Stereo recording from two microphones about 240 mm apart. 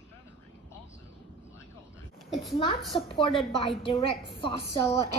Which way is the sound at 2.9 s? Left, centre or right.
Left.